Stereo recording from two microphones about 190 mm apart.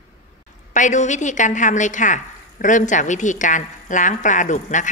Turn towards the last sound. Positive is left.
turn(degrees=40)  # may be behind; listen again after turning